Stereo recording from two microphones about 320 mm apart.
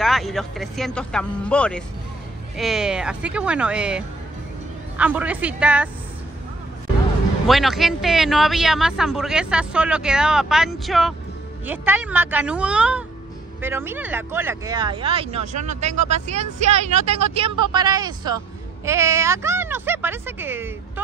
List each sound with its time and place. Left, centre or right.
0.0 s speech: centre
7.4 s speech: centre